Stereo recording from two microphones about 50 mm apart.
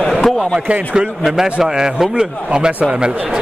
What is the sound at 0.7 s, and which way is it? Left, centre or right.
A man's voice, centre.